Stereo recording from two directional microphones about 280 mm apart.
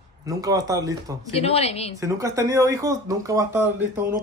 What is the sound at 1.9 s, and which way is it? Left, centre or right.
Speech, centre.